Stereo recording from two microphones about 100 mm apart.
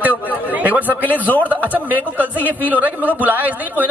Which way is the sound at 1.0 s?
15° left (ahead or behind).